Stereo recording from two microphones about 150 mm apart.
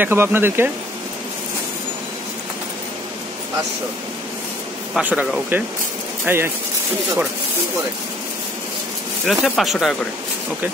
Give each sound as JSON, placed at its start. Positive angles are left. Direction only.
{"t": 0.0, "sound": "speech", "side_deg": -15}
{"t": 4.9, "sound": "speech", "side_deg": -5}
{"t": 9.2, "sound": "speech", "side_deg": 0}